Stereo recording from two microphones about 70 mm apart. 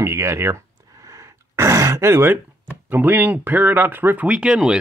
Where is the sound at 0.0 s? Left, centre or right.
Right.